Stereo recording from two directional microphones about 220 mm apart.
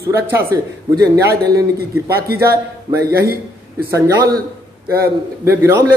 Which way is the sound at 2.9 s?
45° right (ahead or behind).